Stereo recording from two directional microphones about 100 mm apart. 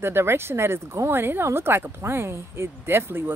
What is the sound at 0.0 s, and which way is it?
Speech, 25° right (ahead or behind).